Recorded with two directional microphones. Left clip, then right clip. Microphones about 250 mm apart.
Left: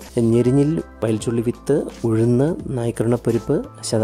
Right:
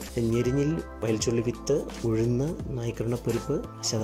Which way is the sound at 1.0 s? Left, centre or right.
Centre.